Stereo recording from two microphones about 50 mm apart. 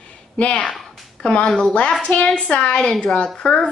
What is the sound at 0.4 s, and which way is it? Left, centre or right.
A woman's voice, left.